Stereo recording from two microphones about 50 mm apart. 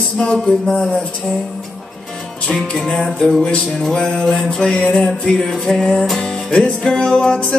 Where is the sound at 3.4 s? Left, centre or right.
Left.